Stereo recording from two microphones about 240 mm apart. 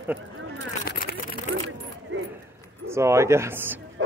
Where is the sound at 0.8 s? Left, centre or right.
Left.